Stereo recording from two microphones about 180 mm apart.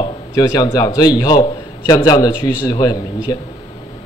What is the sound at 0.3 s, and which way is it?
A man's voice, 20° left (ahead or behind).